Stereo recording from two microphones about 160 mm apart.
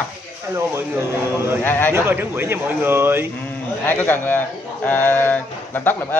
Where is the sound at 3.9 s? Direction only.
10° left (ahead or behind).